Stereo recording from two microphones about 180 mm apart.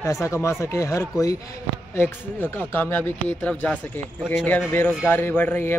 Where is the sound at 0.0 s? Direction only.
15° left (ahead or behind).